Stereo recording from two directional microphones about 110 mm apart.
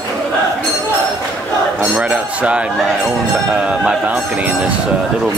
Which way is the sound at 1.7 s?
10° right (ahead or behind).